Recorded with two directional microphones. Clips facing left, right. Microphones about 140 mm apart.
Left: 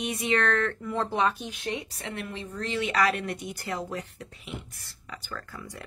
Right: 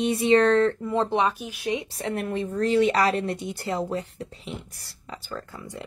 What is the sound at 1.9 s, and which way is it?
Speech, 40° right (ahead or behind).